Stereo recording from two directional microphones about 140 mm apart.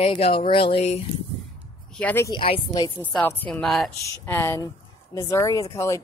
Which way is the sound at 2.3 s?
40° left (ahead or behind).